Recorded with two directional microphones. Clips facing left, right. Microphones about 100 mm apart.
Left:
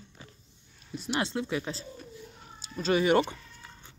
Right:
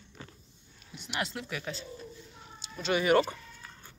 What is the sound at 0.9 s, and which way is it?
Speech, 35° left (ahead or behind).